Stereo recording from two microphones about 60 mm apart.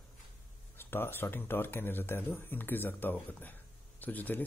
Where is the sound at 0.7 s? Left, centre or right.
Left.